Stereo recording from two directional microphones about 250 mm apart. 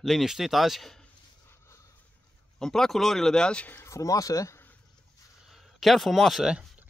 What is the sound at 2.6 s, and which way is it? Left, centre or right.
Speech, centre.